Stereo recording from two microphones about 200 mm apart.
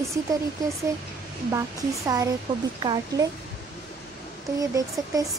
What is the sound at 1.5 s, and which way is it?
A woman's voice, 15° right (ahead or behind).